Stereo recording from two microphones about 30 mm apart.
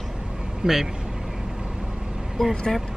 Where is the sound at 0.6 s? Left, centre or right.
Right.